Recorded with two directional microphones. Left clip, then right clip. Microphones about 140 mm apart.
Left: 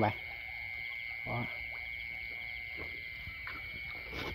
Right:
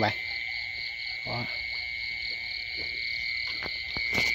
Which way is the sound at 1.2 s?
15° right (ahead or behind).